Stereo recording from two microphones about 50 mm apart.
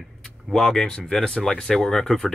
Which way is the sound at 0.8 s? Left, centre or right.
Centre.